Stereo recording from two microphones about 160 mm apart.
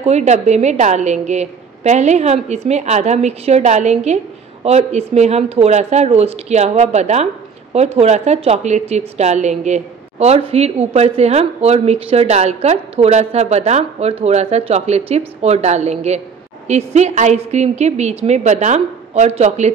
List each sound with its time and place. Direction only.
0.0 s a woman's voice: 45° right (ahead or behind)